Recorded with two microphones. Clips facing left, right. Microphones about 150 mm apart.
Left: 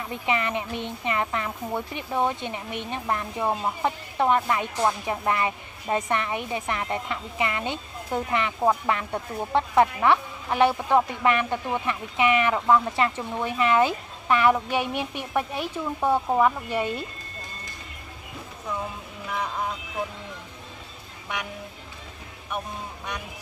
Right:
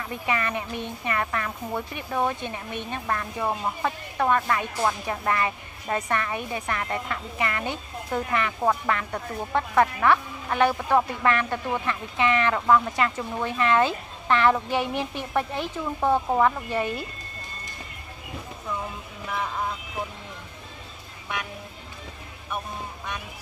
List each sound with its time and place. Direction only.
0.0 s a woman's voice: 20° left (ahead or behind)
12.9 s speech: 25° left (ahead or behind)
13.4 s a woman's voice: 15° left (ahead or behind)